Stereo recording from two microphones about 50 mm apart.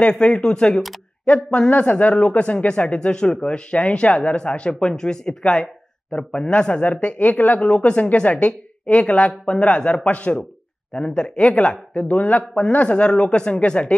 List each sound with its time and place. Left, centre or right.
0.0 s speech: centre
7.6 s speech: left
10.9 s speech: centre
12.2 s a man's voice: left